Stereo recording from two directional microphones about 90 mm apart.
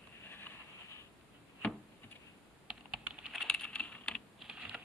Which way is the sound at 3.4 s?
10° left (ahead or behind).